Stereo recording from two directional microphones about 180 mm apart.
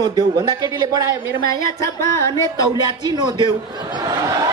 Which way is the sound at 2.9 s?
25° right (ahead or behind).